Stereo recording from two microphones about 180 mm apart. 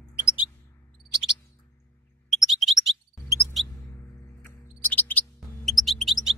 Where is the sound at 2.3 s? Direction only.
Centre (ahead or behind).